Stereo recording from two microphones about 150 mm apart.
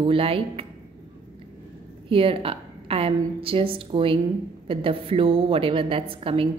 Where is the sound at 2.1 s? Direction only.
35° right (ahead or behind).